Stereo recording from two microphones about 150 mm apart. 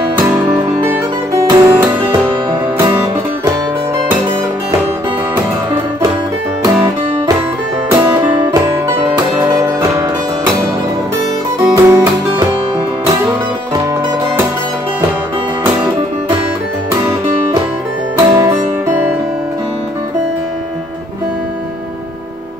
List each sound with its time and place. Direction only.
0.3 s music: 10° right (ahead or behind)
7.9 s music: 15° right (ahead or behind)
9.5 s music: 25° right (ahead or behind)
11.6 s music: 20° right (ahead or behind)
18.1 s music: 20° right (ahead or behind)